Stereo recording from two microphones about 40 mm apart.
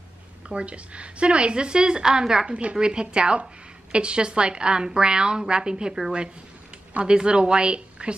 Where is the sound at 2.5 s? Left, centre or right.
Right.